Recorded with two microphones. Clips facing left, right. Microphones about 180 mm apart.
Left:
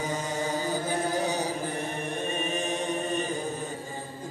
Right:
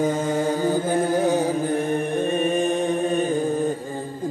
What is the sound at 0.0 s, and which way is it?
Chant, 50° right (ahead or behind).